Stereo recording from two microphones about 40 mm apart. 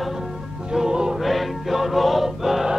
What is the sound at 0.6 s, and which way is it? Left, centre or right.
Music, centre.